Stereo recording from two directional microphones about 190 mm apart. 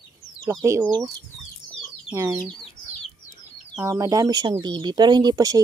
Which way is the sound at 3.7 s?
15° right (ahead or behind).